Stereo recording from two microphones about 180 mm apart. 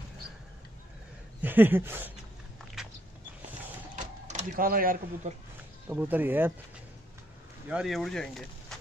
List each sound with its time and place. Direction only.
1.4 s speech: 10° right (ahead or behind)
2.8 s biting: centre (ahead or behind)
3.9 s a sound: 40° right (ahead or behind)
5.9 s speech: 10° right (ahead or behind)
7.7 s speech: centre (ahead or behind)